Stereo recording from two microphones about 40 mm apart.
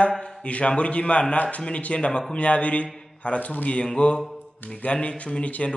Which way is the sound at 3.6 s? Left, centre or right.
Left.